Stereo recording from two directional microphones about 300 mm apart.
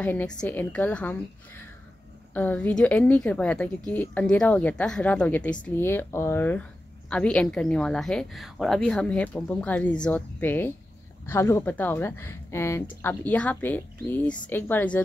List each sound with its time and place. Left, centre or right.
0.0 s a woman's voice: centre